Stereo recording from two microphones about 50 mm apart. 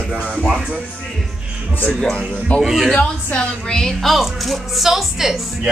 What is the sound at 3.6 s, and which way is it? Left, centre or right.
A man's voice, centre.